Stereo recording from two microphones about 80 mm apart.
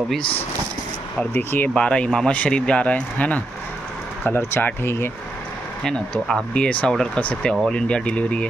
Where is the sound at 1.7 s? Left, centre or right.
Centre; by 5.1 s left.